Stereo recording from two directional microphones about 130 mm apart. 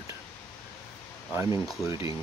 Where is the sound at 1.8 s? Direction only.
25° right (ahead or behind).